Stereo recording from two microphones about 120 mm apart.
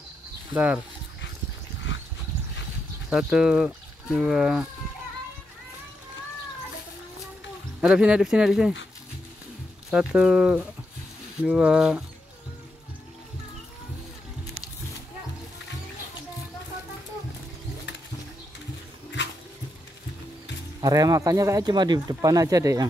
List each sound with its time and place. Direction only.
3.1 s speech: 5° right (ahead or behind)
7.8 s speech: 10° right (ahead or behind)
9.8 s speech: 5° right (ahead or behind)
20.8 s speech: 30° right (ahead or behind)